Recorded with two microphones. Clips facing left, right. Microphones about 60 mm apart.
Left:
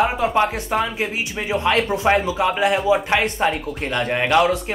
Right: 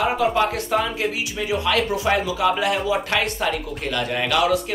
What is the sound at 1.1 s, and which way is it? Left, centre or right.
Speech, left.